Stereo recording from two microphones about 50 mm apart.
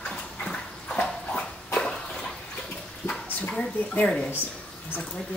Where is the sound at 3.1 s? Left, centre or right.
Left.